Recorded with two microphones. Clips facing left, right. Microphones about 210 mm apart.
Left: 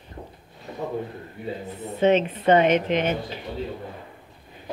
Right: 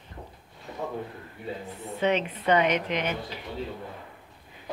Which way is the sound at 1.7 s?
20° left (ahead or behind).